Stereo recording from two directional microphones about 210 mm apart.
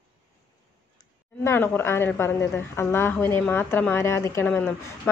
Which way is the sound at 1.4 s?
10° left (ahead or behind).